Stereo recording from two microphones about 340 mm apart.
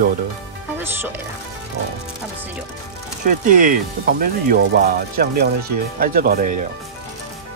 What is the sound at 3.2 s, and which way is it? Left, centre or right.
Speech, right.